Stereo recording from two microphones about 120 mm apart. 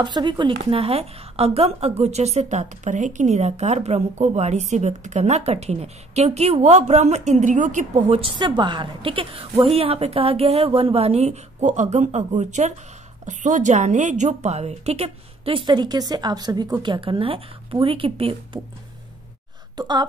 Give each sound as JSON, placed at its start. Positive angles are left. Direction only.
{"t": 0.0, "sound": "a woman's voice", "side_deg": -40}
{"t": 8.3, "sound": "a woman's voice", "side_deg": -40}
{"t": 13.2, "sound": "a woman's voice", "side_deg": -90}
{"t": 19.8, "sound": "a sound", "side_deg": -35}